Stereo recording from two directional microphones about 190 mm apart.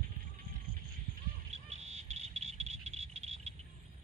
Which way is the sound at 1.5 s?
35° right (ahead or behind).